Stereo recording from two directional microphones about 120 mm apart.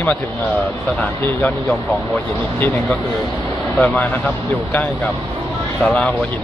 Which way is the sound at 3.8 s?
15° left (ahead or behind).